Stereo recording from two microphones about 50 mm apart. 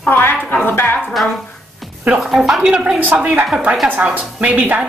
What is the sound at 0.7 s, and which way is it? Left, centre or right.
Speech, left.